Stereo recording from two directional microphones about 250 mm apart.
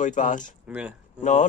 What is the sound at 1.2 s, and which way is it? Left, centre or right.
Speech, left.